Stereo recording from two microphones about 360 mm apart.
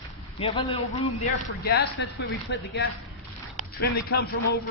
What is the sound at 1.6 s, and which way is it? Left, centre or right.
Speech, left.